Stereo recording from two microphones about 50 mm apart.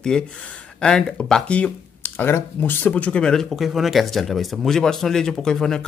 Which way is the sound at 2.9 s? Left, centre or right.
Left.